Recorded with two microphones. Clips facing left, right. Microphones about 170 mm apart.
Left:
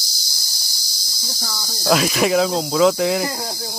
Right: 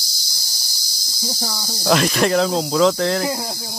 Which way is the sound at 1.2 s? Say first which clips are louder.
Right 5 dB; 25° right (ahead or behind).